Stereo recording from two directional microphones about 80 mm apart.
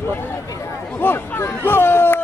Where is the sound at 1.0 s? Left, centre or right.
Left.